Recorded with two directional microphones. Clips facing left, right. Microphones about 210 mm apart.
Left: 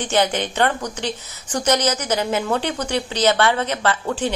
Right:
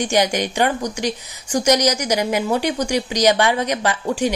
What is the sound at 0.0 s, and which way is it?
A woman's voice, 10° right (ahead or behind).